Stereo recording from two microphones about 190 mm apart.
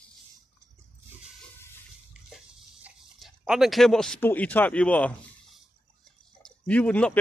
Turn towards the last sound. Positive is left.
turn(degrees=5)  # may be behind; listen again after turning